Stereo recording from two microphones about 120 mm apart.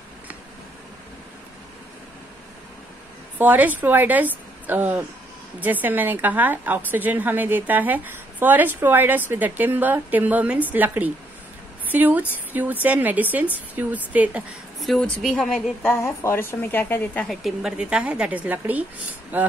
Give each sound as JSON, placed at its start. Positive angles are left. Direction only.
{"t": 3.3, "sound": "a woman's voice", "side_deg": -15}
{"t": 14.8, "sound": "a woman's voice", "side_deg": 0}
{"t": 15.8, "sound": "speech", "side_deg": 20}
{"t": 17.3, "sound": "a woman's voice", "side_deg": 0}